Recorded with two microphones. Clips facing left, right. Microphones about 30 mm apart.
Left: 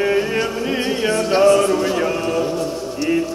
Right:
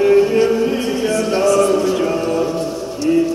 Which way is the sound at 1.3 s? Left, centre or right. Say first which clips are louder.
Left 1 dB; left.